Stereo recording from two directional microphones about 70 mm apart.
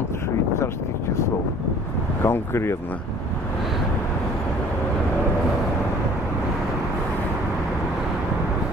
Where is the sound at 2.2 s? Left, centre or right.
Left.